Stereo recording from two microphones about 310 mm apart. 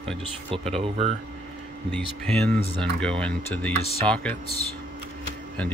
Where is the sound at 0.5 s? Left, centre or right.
Centre.